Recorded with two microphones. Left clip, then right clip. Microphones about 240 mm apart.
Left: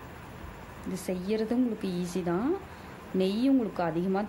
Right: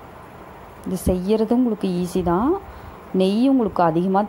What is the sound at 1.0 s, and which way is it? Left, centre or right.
A woman's voice, right.